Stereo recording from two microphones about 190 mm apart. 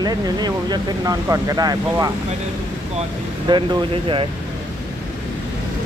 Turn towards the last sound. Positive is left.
turn(degrees=-25)  # may be behind; listen again after turning